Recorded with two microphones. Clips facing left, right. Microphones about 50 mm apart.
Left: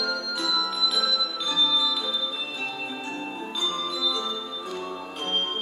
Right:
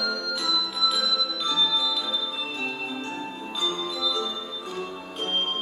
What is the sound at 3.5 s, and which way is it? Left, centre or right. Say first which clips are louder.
Music: right 1 dB; centre.